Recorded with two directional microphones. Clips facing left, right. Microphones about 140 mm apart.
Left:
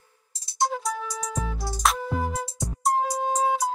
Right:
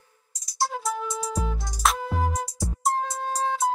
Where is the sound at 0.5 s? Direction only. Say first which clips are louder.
Left 2 dB; 20° left (ahead or behind).